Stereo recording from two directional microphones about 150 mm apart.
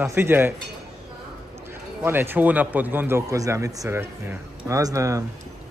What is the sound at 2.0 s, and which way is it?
A man's voice, 15° right (ahead or behind).